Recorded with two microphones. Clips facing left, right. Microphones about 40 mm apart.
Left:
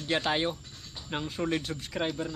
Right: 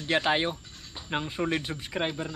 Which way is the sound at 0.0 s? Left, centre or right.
Centre.